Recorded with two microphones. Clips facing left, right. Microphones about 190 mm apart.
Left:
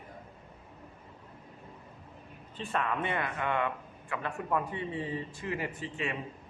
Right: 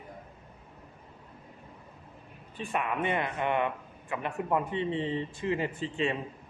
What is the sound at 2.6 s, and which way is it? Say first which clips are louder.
A man's voice: right 1 dB; 15° right (ahead or behind).